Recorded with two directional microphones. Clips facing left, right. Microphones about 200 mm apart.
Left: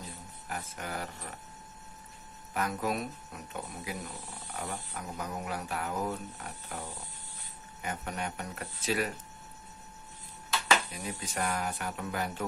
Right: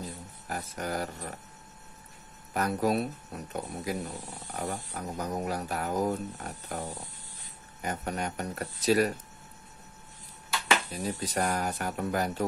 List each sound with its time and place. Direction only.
0.5 s speech: 40° right (ahead or behind)
2.5 s speech: 40° right (ahead or behind)
10.9 s speech: 35° right (ahead or behind)